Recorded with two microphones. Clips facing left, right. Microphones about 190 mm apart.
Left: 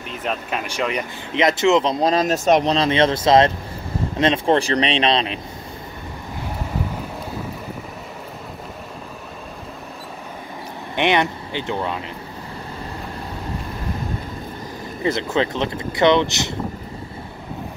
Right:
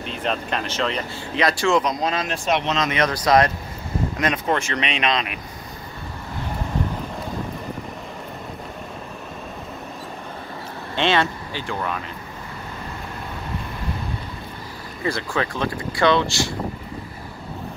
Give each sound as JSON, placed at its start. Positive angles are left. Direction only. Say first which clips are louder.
{"t": 0.2, "sound": "speech", "louder": "even", "side_deg": 5}
{"t": 11.0, "sound": "speech", "louder": "left 2 dB", "side_deg": 20}
{"t": 15.0, "sound": "speech", "louder": "left 4 dB", "side_deg": 20}